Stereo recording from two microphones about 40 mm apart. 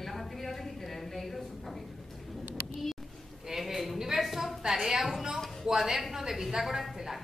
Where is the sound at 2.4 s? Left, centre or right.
Right.